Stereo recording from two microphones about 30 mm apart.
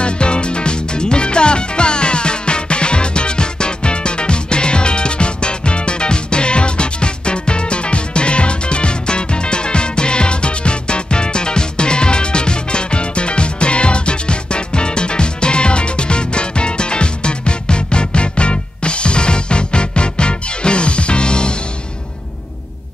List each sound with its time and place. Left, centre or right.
0.0 s music: left